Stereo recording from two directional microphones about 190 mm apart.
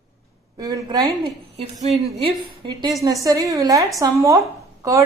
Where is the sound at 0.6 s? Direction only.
20° right (ahead or behind).